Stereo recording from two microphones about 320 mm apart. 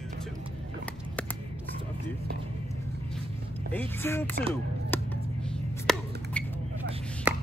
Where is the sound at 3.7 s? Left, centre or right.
Centre.